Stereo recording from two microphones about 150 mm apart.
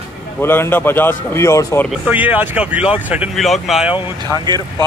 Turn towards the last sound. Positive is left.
turn(degrees=-30)  # may be behind; listen again after turning